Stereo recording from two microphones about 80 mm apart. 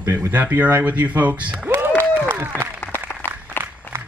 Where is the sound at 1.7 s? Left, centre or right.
Right.